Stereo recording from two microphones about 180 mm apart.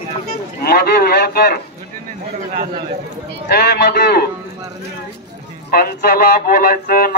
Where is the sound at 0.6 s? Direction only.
60° left (ahead or behind).